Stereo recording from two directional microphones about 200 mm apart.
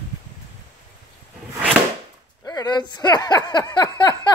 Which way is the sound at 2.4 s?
20° left (ahead or behind).